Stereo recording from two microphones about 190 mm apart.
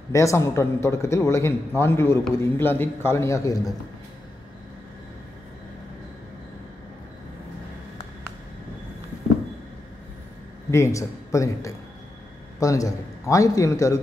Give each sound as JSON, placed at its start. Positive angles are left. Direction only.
{"t": 0.1, "sound": "a man's voice", "side_deg": 15}
{"t": 10.7, "sound": "a man's voice", "side_deg": 15}